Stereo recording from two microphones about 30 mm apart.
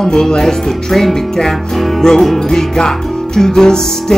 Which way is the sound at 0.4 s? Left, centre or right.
Centre.